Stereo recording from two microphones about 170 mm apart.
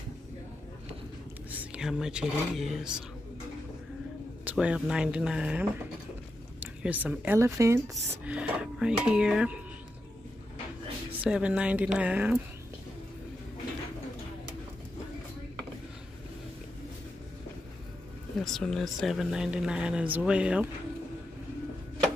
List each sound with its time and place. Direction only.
1.5 s a sound: 10° right (ahead or behind)
2.5 s speech: centre (ahead or behind)
4.5 s speech: 5° right (ahead or behind)
7.9 s speech: 5° right (ahead or behind)
11.2 s speech: 5° right (ahead or behind)
18.4 s speech: centre (ahead or behind)